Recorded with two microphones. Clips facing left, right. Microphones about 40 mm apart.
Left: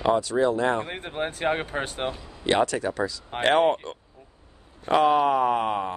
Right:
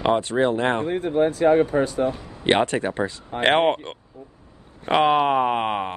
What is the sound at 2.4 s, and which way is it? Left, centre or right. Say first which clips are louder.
Speech: right 3 dB; right.